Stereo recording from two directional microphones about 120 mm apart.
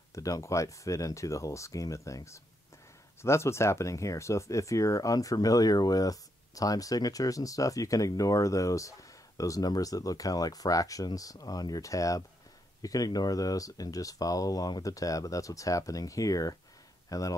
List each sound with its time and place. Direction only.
0.1 s speech: 25° left (ahead or behind)